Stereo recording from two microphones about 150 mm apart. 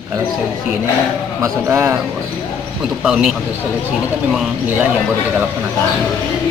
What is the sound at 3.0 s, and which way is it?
Speech, 5° right (ahead or behind).